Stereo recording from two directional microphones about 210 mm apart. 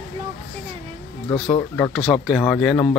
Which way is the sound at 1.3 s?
20° left (ahead or behind).